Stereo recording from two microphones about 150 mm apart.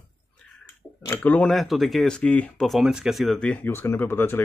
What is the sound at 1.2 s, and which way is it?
Speech, 10° left (ahead or behind).